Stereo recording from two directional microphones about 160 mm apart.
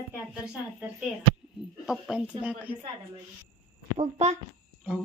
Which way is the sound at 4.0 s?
45° right (ahead or behind).